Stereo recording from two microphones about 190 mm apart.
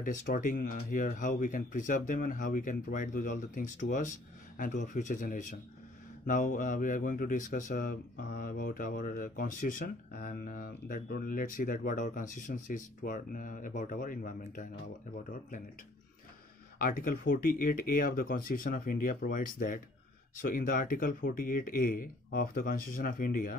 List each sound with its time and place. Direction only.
0.0 s speech: 45° left (ahead or behind)
16.7 s speech: 45° left (ahead or behind)